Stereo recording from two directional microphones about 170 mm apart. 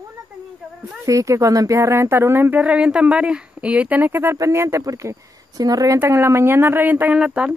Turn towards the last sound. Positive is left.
turn(degrees=-5)  # may be behind; listen again after turning